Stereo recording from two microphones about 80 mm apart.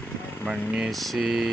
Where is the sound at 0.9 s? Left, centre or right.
Centre.